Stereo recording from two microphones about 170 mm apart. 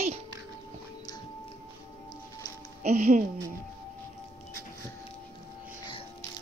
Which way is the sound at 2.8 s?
45° right (ahead or behind).